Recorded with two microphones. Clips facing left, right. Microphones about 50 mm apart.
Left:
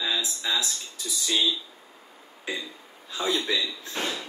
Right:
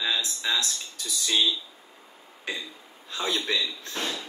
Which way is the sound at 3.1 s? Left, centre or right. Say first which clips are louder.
Left 1 dB; right.